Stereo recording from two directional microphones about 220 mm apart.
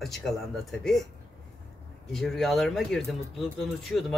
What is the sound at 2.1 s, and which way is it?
Speech, centre (ahead or behind).